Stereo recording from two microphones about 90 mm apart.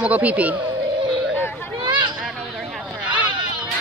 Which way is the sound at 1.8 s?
55° right (ahead or behind).